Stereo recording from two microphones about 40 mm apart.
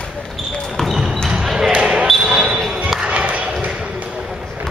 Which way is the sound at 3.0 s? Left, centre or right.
Right.